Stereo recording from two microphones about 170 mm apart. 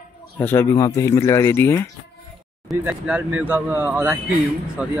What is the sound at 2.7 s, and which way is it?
Speech, 10° right (ahead or behind).